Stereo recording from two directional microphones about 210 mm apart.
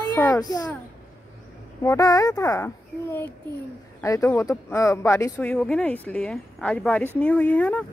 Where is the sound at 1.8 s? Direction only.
15° left (ahead or behind).